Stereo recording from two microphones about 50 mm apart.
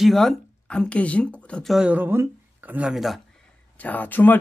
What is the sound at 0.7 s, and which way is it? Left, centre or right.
Speech, left.